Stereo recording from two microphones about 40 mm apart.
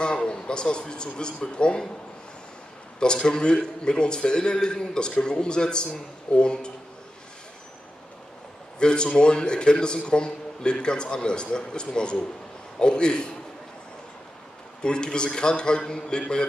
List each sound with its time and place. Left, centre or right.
0.0 s a man's voice: left
3.2 s a man's voice: centre
8.7 s a man's voice: left
14.8 s a man's voice: left